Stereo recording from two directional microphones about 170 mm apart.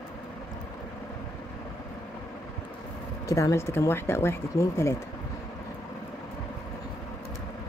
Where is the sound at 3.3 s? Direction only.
20° left (ahead or behind).